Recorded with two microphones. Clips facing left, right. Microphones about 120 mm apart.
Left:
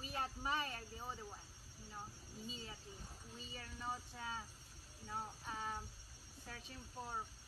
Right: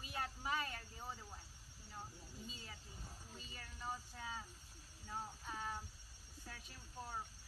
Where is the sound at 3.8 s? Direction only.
20° left (ahead or behind).